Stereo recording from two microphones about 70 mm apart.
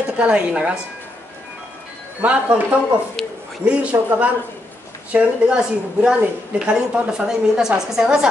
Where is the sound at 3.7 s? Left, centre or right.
Centre.